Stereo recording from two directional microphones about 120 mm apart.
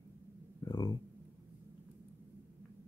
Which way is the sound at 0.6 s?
35° left (ahead or behind).